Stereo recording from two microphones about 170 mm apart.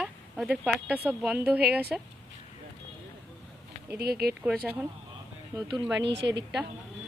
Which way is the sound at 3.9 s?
70° right (ahead or behind).